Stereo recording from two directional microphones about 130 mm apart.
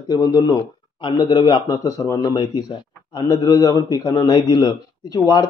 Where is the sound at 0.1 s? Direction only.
30° left (ahead or behind).